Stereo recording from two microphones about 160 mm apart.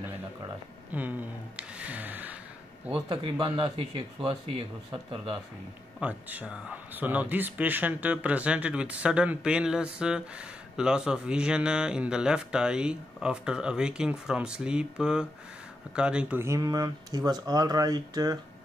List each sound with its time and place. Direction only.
0.9 s music: 10° right (ahead or behind)
2.9 s speech: 30° right (ahead or behind)
5.9 s speech: 10° right (ahead or behind)